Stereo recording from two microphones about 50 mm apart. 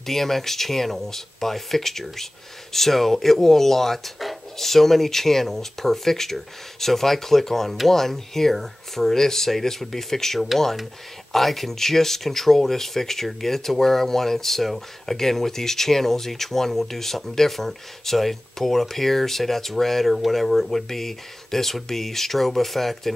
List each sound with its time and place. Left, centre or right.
0.0 s speech: centre